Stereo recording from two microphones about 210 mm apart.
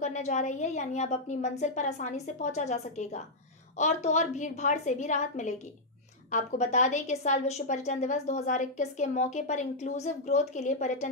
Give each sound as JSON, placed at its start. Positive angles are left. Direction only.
{"t": 0.0, "sound": "a woman's voice", "side_deg": 35}